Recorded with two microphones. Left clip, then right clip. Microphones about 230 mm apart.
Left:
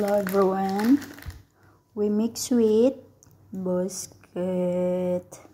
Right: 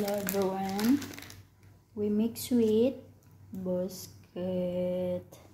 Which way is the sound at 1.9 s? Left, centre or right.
Left.